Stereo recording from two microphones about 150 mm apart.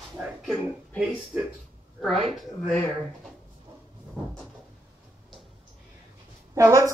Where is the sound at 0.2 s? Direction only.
15° right (ahead or behind).